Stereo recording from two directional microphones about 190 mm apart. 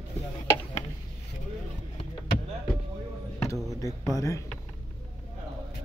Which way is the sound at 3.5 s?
15° left (ahead or behind).